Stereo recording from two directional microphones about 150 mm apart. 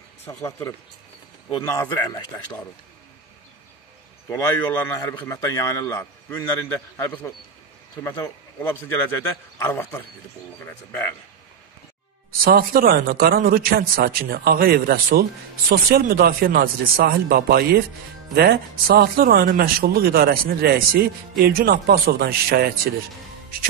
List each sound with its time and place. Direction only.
0.3 s a man's voice: 20° left (ahead or behind)
4.3 s a man's voice: 15° left (ahead or behind)
12.4 s speech: 80° right